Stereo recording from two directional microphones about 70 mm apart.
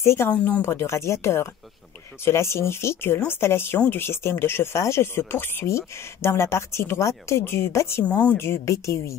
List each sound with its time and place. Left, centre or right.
0.0 s a woman's voice: left
8.0 s speech: left
8.4 s a woman's voice: left